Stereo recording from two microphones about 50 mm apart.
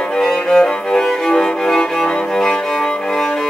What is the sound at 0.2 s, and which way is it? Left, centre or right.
Music, centre.